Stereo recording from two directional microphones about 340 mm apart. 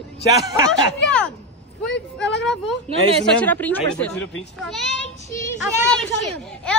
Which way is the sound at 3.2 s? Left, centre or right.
Centre.